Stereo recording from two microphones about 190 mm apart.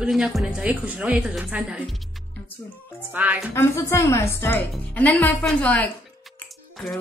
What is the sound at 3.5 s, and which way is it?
A woman's voice, 15° left (ahead or behind).